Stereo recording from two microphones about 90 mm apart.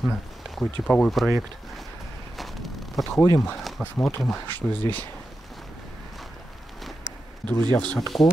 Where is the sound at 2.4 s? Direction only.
Centre (ahead or behind).